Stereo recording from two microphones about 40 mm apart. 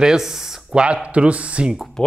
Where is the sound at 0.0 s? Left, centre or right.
Centre; by 1.8 s right.